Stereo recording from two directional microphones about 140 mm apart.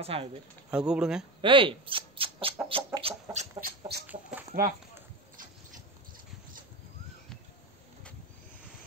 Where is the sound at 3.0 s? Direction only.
55° right (ahead or behind).